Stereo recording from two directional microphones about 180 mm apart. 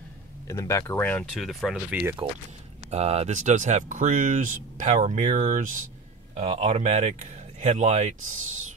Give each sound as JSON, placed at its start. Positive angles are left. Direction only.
{"t": 0.5, "sound": "speech", "side_deg": 15}
{"t": 1.3, "sound": "speech", "side_deg": 0}
{"t": 2.9, "sound": "speech", "side_deg": -35}